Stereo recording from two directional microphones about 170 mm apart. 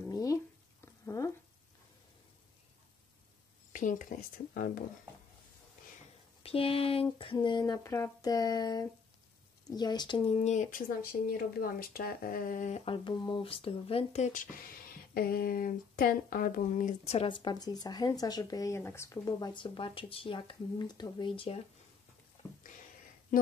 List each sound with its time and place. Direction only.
0.1 s a sound: 20° left (ahead or behind)
3.7 s speech: 50° left (ahead or behind)
6.4 s speech: 35° left (ahead or behind)
10.4 s speech: 45° left (ahead or behind)
12.8 s speech: 30° left (ahead or behind)
22.6 s a sound: 50° left (ahead or behind)